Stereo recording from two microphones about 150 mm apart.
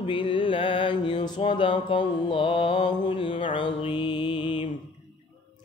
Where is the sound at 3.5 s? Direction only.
35° left (ahead or behind).